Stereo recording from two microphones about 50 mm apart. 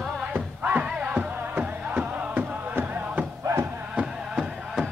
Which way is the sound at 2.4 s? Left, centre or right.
Right.